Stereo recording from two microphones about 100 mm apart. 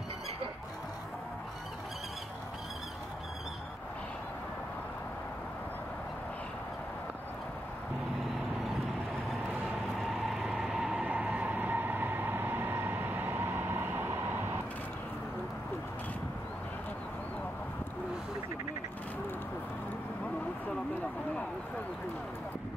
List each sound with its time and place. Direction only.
9.9 s vehicle: centre (ahead or behind)
10.5 s train: 5° right (ahead or behind)